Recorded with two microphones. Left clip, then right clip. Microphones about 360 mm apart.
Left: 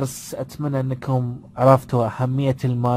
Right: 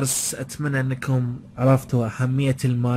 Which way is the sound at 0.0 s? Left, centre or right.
Centre.